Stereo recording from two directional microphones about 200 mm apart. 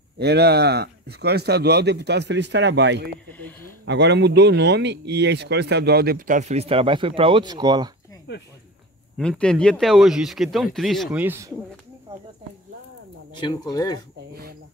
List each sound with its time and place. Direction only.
0.2 s speech: 55° right (ahead or behind)
3.3 s speech: 10° left (ahead or behind)
3.8 s speech: 60° right (ahead or behind); by 7.9 s 20° right (ahead or behind)
9.1 s speech: 5° left (ahead or behind)
13.4 s speech: 20° left (ahead or behind)
14.3 s speech: 50° right (ahead or behind)